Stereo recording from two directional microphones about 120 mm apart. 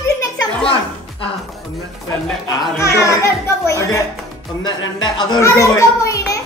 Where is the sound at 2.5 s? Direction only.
30° left (ahead or behind).